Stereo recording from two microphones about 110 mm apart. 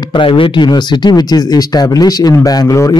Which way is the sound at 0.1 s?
50° left (ahead or behind).